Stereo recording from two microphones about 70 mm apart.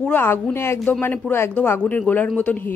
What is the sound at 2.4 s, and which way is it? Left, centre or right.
Speech, left.